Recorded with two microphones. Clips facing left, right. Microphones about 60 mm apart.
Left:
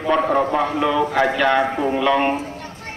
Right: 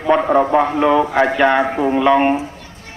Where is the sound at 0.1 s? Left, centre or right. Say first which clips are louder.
Right 5 dB; centre.